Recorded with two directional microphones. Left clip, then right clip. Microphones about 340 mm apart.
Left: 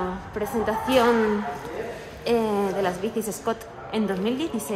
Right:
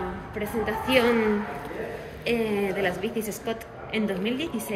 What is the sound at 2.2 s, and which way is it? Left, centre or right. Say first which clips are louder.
A woman's voice: left 3 dB; centre.